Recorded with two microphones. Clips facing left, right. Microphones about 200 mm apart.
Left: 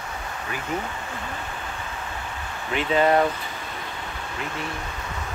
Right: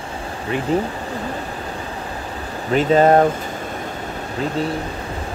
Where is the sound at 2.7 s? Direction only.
40° right (ahead or behind).